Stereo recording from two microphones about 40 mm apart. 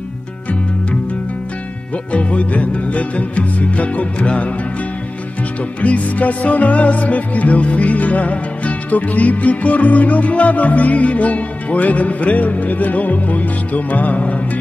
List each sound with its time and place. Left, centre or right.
2.1 s music: left
5.8 s music: left